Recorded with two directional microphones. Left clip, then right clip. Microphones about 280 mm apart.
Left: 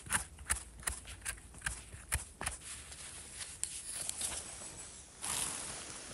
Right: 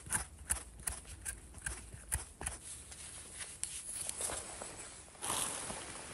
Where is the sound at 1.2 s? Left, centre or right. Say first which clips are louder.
Left 5 dB; centre.